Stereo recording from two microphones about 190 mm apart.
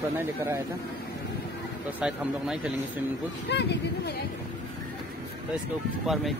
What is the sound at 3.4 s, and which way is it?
Speech, 65° left (ahead or behind).